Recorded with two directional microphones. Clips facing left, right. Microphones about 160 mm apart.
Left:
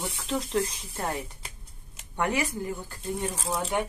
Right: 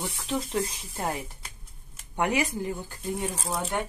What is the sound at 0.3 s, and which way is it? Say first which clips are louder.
Speech: left 1 dB; 5° right (ahead or behind).